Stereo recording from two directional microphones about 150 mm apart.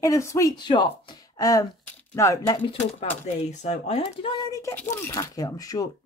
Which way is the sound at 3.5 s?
50° left (ahead or behind).